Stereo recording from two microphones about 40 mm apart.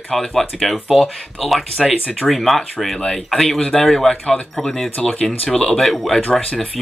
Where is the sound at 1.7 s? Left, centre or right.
Centre.